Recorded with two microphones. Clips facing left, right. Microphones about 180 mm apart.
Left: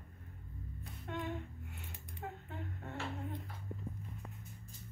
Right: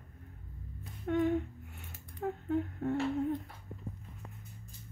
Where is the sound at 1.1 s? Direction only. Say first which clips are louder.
Right 12 dB; 50° right (ahead or behind).